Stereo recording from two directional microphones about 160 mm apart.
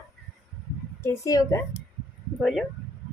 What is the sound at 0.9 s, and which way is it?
Speech, 15° left (ahead or behind).